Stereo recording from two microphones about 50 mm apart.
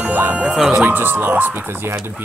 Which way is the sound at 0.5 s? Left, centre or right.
Centre.